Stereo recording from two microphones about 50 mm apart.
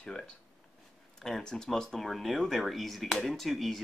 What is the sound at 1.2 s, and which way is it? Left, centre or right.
Speech, centre.